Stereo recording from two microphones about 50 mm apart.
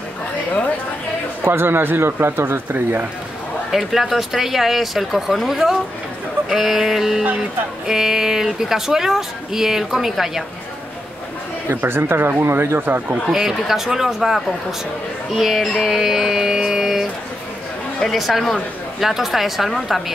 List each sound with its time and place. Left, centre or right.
1.4 s speech: right
3.7 s speech: centre
11.7 s speech: right
13.3 s speech: centre